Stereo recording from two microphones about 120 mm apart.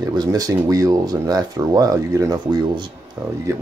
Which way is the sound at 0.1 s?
35° right (ahead or behind).